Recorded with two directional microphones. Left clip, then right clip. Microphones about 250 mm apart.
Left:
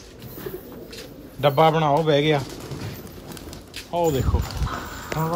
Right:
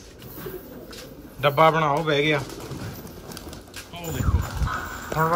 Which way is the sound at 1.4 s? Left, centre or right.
Centre.